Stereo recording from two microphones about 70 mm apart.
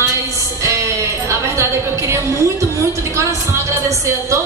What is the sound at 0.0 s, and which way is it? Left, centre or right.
Music, right.